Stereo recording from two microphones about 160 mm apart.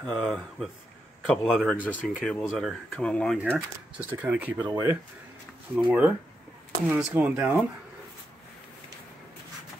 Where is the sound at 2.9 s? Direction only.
5° left (ahead or behind).